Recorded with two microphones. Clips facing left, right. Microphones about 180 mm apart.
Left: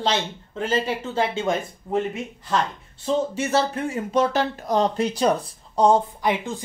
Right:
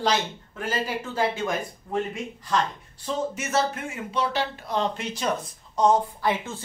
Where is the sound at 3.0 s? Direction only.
30° left (ahead or behind).